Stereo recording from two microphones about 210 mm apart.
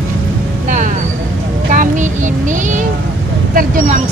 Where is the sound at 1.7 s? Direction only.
35° right (ahead or behind).